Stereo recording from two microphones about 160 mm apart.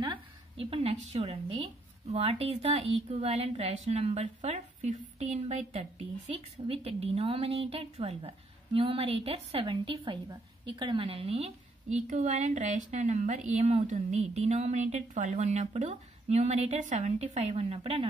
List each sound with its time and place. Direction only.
0.0 s a woman's voice: 30° right (ahead or behind)